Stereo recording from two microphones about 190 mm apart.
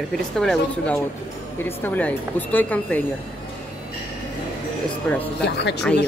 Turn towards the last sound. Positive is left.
turn(degrees=65)  # may be behind; listen again after turning